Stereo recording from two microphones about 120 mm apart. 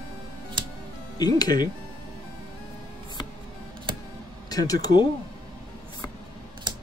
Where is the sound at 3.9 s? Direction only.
45° right (ahead or behind).